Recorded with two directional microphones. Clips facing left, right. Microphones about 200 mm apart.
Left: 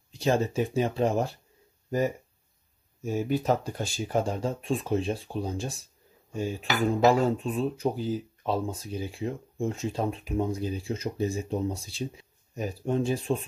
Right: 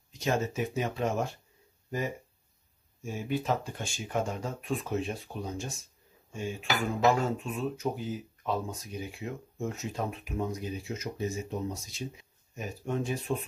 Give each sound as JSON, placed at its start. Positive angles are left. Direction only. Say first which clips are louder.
{"t": 0.1, "sound": "dishes", "louder": "left 5 dB", "side_deg": 30}
{"t": 1.9, "sound": "speech", "louder": "left 7 dB", "side_deg": 40}
{"t": 3.0, "sound": "dishes", "louder": "left 5 dB", "side_deg": 40}